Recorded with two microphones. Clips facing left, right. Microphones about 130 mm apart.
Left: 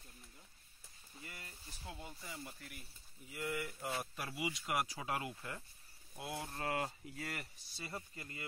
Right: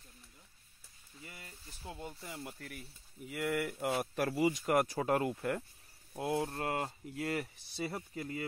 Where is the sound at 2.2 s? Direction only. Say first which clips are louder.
Right 5 dB; 60° right (ahead or behind); by 3.9 s 75° right (ahead or behind).